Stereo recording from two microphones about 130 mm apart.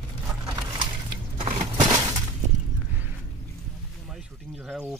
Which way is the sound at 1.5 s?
60° right (ahead or behind).